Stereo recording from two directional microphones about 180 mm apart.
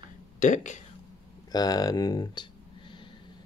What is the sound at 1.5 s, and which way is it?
Speech, 20° left (ahead or behind).